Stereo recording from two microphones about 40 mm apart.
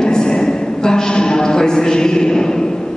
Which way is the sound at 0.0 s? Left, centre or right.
Centre.